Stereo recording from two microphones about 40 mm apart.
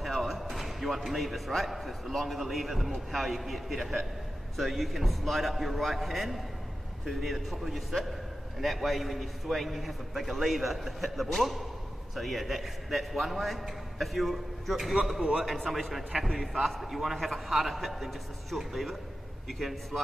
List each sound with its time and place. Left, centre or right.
0.0 s a man's voice: centre
16.6 s a man's voice: centre